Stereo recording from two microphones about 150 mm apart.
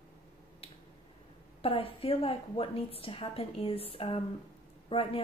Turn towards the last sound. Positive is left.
turn(degrees=40)  # may be behind; listen again after turning